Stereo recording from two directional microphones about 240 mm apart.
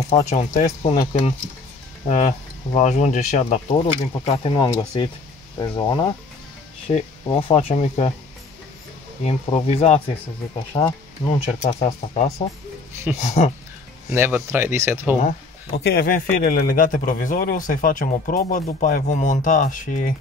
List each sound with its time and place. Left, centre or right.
0.1 s speech: left
4.1 s speech: centre
9.2 s speech: left
11.3 s speech: left
14.1 s speech: centre
15.2 s a man's voice: left